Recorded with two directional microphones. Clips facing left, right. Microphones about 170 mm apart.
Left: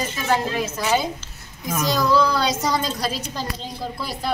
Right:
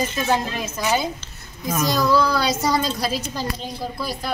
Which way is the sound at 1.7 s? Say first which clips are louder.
Right 1 dB; 10° right (ahead or behind).